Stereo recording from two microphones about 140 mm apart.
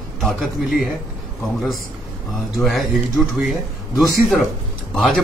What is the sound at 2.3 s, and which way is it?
Speech, centre (ahead or behind).